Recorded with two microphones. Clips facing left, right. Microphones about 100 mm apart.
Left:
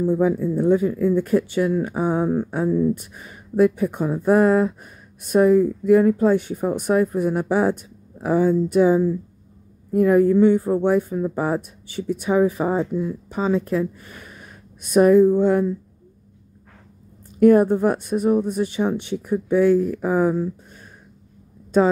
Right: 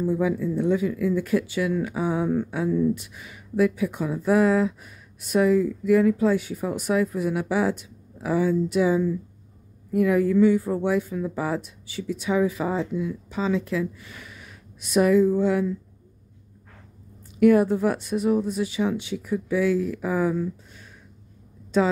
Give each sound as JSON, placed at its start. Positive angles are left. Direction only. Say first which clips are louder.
{"t": 0.1, "sound": "speech", "louder": "left 4 dB", "side_deg": 45}
{"t": 17.4, "sound": "speech", "louder": "left 4 dB", "side_deg": 45}